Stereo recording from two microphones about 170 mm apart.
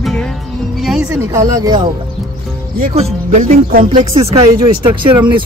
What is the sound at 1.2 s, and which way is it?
Speech, 20° right (ahead or behind).